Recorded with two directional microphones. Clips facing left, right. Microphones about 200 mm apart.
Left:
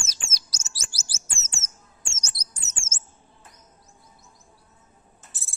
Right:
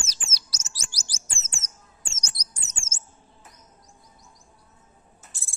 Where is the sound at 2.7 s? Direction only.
55° right (ahead or behind).